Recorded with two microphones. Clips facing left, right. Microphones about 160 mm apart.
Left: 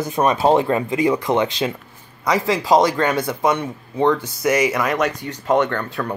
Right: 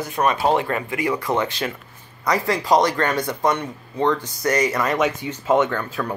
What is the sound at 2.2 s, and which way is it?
Speech, 5° left (ahead or behind).